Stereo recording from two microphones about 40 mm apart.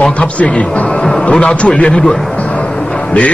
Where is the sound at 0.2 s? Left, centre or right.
Left.